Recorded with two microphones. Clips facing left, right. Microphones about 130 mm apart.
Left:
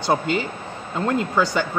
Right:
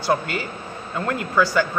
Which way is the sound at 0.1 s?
25° left (ahead or behind).